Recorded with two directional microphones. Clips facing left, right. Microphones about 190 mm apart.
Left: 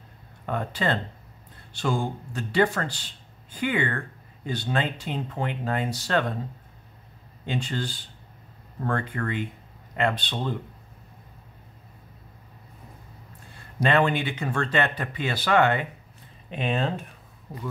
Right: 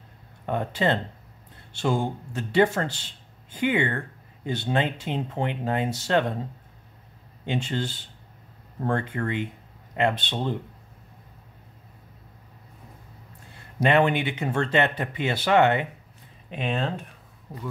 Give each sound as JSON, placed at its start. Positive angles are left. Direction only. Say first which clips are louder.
{"t": 0.5, "sound": "speech", "louder": "right 2 dB", "side_deg": -20}
{"t": 7.4, "sound": "speech", "louder": "right 2 dB", "side_deg": -20}
{"t": 13.8, "sound": "speech", "louder": "right 2 dB", "side_deg": -20}
{"t": 16.4, "sound": "speech", "louder": "left 1 dB", "side_deg": 0}